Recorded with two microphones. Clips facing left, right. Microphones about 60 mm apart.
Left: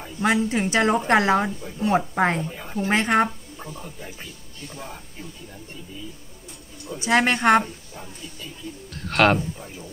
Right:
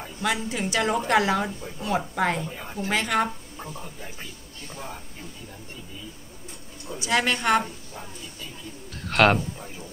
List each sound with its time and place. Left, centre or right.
0.2 s a woman's voice: left
2.4 s a woman's voice: centre
2.9 s a woman's voice: left
3.3 s speech: centre
7.0 s a woman's voice: left
8.9 s speech: centre